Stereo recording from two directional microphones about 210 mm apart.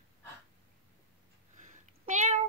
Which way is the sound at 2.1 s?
35° right (ahead or behind).